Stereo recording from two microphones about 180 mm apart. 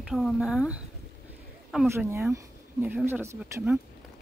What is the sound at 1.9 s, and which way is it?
Speech, 15° right (ahead or behind).